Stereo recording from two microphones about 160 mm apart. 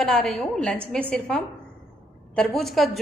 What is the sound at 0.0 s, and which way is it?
Speech, 5° left (ahead or behind).